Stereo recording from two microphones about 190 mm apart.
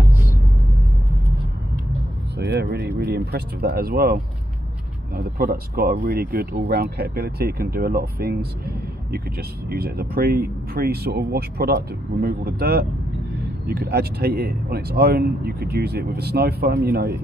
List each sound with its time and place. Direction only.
2.3 s vehicle: 65° right (ahead or behind)
3.3 s speech: 55° right (ahead or behind)